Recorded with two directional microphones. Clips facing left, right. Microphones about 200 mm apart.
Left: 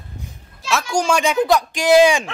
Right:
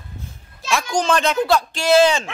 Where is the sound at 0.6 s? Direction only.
5° left (ahead or behind).